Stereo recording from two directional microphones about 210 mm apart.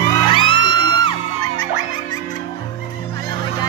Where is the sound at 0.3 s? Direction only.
25° left (ahead or behind).